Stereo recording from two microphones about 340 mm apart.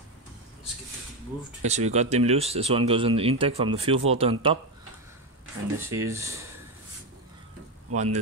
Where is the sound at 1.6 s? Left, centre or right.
Centre.